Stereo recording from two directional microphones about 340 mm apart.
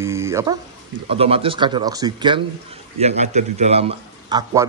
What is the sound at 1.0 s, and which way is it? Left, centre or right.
A man's voice, centre.